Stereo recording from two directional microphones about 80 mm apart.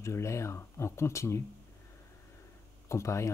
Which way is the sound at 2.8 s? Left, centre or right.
Left.